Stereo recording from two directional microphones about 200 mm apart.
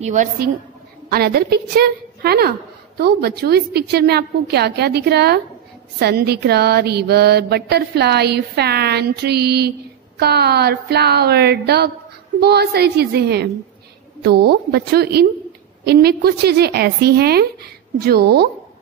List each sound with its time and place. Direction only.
0.0 s a woman's voice: 40° right (ahead or behind)
1.0 s a woman's voice: 50° right (ahead or behind)
3.0 s mantra: 50° right (ahead or behind)